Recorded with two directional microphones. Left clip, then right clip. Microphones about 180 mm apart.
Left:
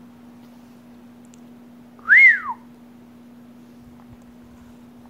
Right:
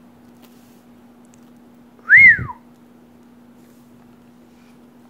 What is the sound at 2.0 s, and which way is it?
Whistling, 10° left (ahead or behind).